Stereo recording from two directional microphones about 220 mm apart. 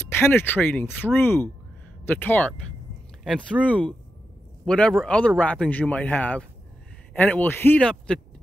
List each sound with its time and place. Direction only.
0.1 s speech: 10° left (ahead or behind)